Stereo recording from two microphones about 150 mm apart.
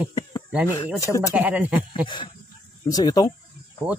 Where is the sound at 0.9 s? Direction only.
20° left (ahead or behind).